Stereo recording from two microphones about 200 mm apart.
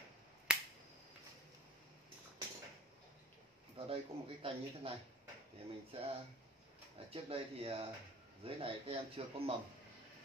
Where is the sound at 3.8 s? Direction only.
30° right (ahead or behind).